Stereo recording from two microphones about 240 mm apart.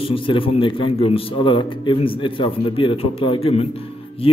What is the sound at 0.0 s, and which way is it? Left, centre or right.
A man's voice, left.